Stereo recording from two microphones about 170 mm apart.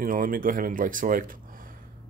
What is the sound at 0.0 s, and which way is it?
Speech, 55° right (ahead or behind).